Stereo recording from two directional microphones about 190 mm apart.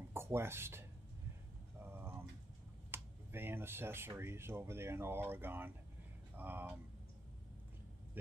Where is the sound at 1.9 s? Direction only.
10° right (ahead or behind).